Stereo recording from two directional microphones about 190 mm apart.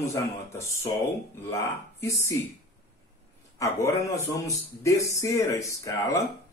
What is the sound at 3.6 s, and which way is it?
Speech, 15° left (ahead or behind).